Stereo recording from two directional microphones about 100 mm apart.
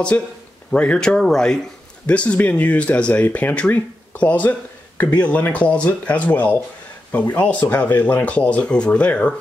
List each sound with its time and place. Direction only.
0.1 s speech: 15° left (ahead or behind)